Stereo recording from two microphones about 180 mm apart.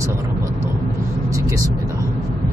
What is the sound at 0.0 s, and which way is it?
Vehicle, 15° right (ahead or behind).